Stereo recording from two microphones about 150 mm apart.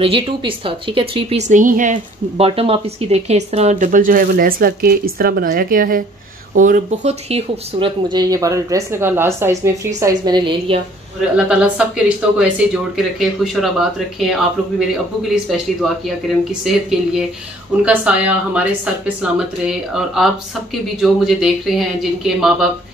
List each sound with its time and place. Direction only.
0.0 s speech: 35° right (ahead or behind)
1.5 s a woman's voice: 60° right (ahead or behind)
2.3 s speech: 40° right (ahead or behind)
8.1 s speech: 25° right (ahead or behind)
11.3 s speech: 5° right (ahead or behind)